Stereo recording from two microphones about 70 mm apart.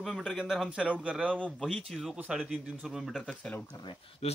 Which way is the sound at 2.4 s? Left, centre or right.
Centre.